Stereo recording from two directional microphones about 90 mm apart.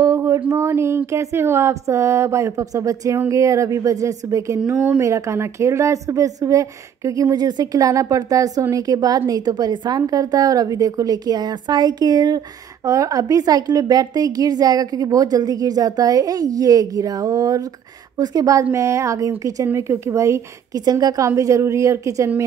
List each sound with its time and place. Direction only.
0.0 s a sound: 35° right (ahead or behind)
0.5 s a woman's voice: 30° right (ahead or behind); by 12.4 s 50° right (ahead or behind)
12.8 s a woman's voice: 40° right (ahead or behind)